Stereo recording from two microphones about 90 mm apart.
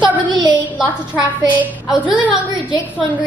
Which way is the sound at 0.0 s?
55° right (ahead or behind).